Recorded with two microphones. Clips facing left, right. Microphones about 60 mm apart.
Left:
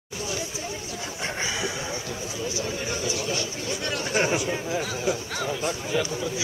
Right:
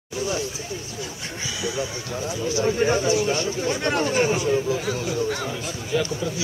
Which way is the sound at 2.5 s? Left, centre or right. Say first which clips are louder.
Right 9 dB; right.